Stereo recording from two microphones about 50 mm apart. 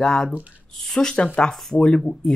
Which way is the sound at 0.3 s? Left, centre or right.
Right.